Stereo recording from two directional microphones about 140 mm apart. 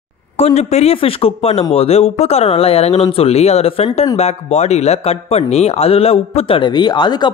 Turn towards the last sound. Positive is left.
turn(degrees=30)  # may be behind; listen again after turning